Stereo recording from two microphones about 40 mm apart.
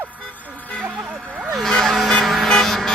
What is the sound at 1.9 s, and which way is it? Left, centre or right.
Vehicle, centre.